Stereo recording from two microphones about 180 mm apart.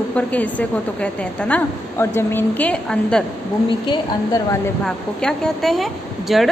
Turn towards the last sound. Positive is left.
turn(degrees=0)  # may be behind; listen again after turning